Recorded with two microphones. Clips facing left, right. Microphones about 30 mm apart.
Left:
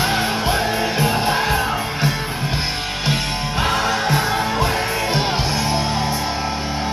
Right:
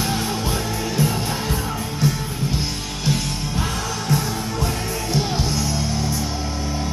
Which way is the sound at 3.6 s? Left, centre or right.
Left.